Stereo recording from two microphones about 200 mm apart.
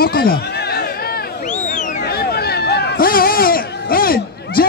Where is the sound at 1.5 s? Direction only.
40° left (ahead or behind).